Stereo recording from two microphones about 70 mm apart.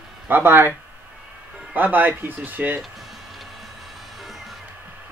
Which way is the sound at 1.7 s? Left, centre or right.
Right.